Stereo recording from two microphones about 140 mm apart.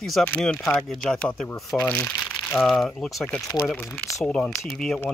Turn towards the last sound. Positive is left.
turn(degrees=0)  # may be behind; listen again after turning